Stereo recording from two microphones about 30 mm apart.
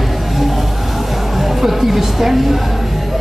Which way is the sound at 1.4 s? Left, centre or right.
Centre.